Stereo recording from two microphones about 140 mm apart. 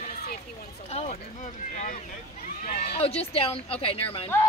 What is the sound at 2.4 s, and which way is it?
Run, 70° left (ahead or behind).